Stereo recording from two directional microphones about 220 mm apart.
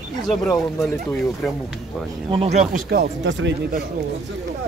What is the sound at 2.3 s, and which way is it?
Speech, 30° right (ahead or behind).